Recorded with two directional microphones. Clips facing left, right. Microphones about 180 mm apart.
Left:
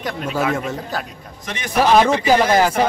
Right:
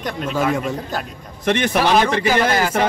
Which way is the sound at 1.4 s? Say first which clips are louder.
Right 2 dB; 65° right (ahead or behind).